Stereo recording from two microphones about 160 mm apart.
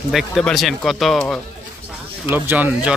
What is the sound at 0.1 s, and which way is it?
Speech, centre (ahead or behind).